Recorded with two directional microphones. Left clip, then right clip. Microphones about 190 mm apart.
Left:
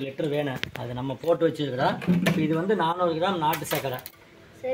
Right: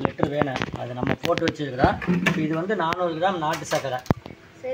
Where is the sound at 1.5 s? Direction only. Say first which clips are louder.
Right 3 dB; 65° left (ahead or behind); by 3.5 s 50° left (ahead or behind).